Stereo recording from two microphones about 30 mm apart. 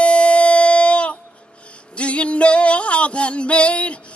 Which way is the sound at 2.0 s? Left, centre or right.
Left.